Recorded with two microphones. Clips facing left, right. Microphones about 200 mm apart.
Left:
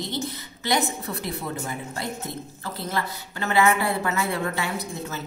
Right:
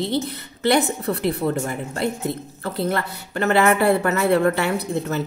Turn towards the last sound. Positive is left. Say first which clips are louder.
# right 8 dB
turn(degrees=-65)  # may be behind; listen again after turning